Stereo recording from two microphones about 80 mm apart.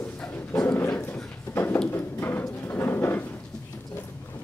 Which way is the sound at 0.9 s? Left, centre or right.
Left.